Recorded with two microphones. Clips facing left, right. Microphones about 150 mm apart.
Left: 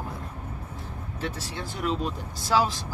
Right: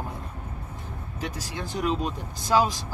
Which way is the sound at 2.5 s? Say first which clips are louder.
Right 2 dB; 15° right (ahead or behind).